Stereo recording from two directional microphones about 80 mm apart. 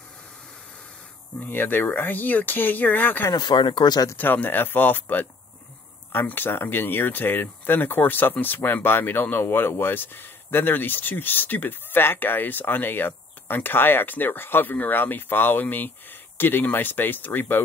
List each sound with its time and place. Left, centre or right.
1.4 s speech: left
3.3 s speech: left
4.2 s speech: left